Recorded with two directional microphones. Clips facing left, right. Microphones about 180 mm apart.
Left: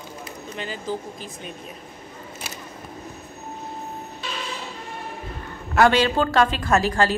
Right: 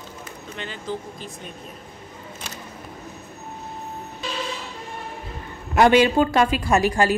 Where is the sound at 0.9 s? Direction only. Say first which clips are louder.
Left 1 dB; 5° left (ahead or behind).